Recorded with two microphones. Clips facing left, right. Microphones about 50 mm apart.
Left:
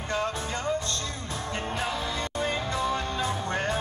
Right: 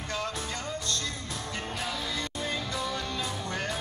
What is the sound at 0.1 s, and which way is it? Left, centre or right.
Music, left.